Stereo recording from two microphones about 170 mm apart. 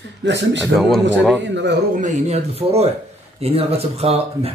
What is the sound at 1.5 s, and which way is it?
Speech, 90° right.